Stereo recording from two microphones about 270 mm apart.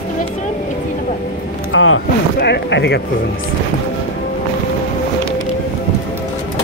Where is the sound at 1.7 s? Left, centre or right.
Left.